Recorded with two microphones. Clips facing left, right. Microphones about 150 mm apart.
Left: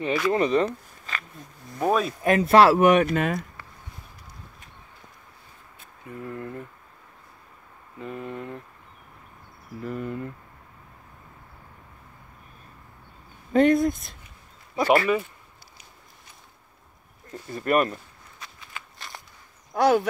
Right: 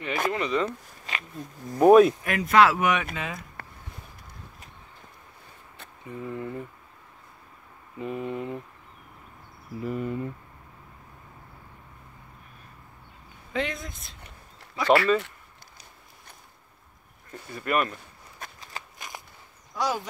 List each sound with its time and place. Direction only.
0.3 s speech: 40° left (ahead or behind)
1.9 s speech: 10° right (ahead or behind)
2.2 s speech: 30° left (ahead or behind); by 3.3 s 50° left (ahead or behind)
3.6 s a sound: 55° right (ahead or behind)
6.1 s speech: 5° right (ahead or behind)
8.0 s speech: 5° right (ahead or behind)
9.8 s speech: 5° right (ahead or behind)
13.5 s speech: 50° left (ahead or behind)
14.9 s speech: 15° left (ahead or behind)
17.6 s speech: 40° left (ahead or behind)
18.4 s a sound: 40° right (ahead or behind)
19.7 s speech: 60° left (ahead or behind)